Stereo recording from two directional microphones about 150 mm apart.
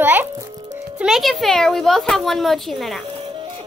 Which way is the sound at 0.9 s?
5° right (ahead or behind).